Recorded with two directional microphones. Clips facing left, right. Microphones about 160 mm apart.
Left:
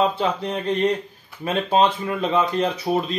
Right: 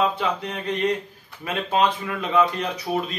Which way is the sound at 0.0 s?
30° left (ahead or behind).